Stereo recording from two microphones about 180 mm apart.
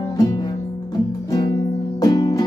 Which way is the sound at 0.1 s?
20° left (ahead or behind).